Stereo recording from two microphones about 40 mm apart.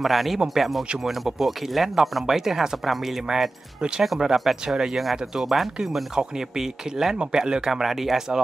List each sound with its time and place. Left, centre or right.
0.0 s speech: centre